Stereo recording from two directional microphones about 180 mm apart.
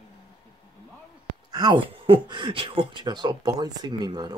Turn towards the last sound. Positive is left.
turn(degrees=-25)  # may be behind; listen again after turning